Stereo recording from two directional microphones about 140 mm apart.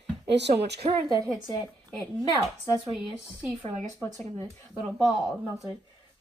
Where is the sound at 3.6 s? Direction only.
55° right (ahead or behind).